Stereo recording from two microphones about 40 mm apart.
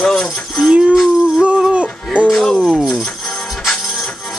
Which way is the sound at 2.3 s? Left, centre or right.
Centre.